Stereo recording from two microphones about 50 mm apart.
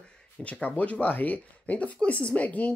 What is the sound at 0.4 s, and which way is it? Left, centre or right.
A woman's voice, left.